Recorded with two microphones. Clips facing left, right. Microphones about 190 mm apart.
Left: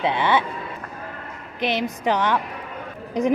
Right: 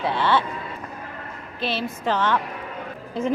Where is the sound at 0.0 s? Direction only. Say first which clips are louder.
Left 1 dB; 15° left (ahead or behind).